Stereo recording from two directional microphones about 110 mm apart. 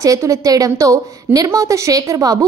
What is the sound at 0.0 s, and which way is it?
A woman's voice, 30° right (ahead or behind).